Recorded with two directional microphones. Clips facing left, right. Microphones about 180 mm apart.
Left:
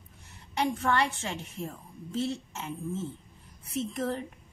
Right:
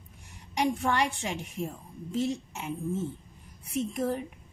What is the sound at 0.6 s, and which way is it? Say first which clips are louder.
A woman's voice: even; 15° right (ahead or behind).